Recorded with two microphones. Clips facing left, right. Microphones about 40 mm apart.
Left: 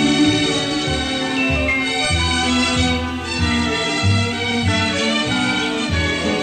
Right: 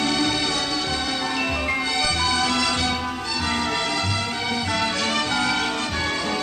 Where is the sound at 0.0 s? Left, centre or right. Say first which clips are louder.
Left 7 dB; left.